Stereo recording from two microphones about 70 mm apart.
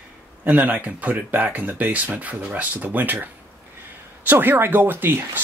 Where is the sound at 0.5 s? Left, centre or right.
Right.